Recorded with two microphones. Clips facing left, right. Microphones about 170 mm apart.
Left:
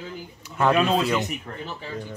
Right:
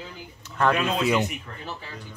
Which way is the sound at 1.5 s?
40° left (ahead or behind).